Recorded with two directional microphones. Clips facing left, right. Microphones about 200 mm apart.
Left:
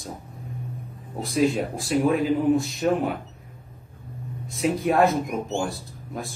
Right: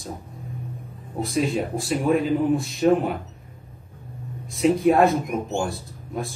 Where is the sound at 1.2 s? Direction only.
Centre (ahead or behind).